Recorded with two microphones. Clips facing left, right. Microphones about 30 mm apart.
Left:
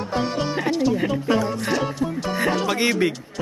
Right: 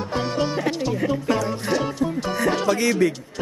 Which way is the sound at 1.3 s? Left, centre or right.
Centre.